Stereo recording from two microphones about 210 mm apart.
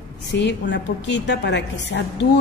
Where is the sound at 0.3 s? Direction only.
55° left (ahead or behind).